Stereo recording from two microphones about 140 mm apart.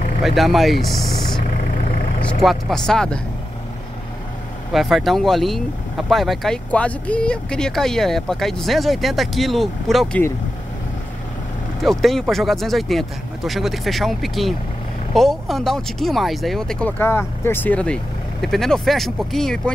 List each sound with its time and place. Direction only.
0.2 s speech: centre (ahead or behind)
1.8 s vehicle: 65° left (ahead or behind)
2.4 s speech: 5° left (ahead or behind)
4.7 s speech: centre (ahead or behind)
11.8 s speech: centre (ahead or behind)
17.0 s speech: 15° left (ahead or behind)